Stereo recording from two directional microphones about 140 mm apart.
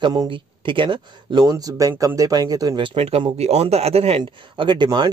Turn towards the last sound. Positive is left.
turn(degrees=-35)  # may be behind; listen again after turning